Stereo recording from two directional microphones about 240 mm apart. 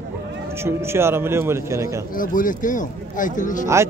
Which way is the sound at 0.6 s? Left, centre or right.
Centre.